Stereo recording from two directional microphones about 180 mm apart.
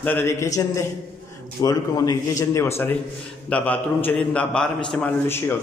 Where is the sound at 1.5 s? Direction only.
20° left (ahead or behind).